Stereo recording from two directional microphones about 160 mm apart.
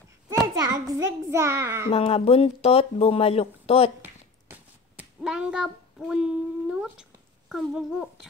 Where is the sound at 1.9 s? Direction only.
40° left (ahead or behind).